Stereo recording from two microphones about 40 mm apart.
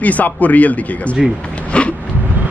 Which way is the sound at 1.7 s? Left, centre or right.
Left.